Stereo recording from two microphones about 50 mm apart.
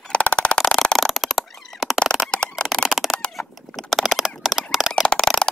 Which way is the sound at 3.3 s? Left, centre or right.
Centre.